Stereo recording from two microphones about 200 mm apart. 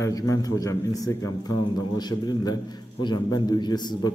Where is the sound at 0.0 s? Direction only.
15° left (ahead or behind).